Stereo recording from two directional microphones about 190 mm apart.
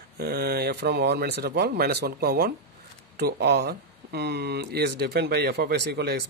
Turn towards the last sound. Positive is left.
turn(degrees=-60)  # may be behind; listen again after turning